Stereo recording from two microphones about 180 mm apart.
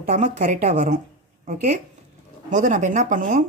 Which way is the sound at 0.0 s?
45° right (ahead or behind).